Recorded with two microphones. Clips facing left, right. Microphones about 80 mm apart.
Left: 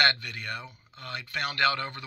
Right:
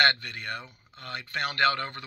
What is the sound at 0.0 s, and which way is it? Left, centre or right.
Speech, right.